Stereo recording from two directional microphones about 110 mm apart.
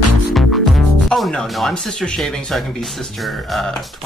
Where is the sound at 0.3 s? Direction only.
Centre (ahead or behind).